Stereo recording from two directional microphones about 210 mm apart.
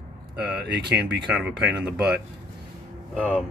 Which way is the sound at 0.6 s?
55° right (ahead or behind).